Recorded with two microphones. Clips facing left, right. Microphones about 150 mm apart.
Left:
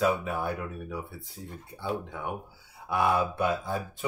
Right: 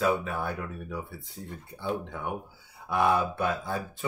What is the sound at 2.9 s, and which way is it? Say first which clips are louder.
Speech: right 1 dB; 10° left (ahead or behind).